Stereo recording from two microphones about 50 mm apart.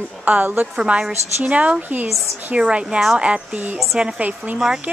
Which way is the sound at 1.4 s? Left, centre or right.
Right.